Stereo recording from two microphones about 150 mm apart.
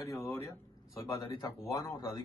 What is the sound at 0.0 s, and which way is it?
Speech, 15° left (ahead or behind).